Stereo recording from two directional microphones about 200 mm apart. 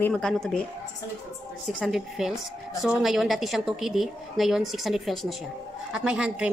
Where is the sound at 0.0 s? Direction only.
5° left (ahead or behind).